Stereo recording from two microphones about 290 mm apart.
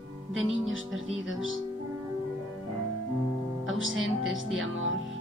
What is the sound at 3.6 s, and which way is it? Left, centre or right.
Speech, right.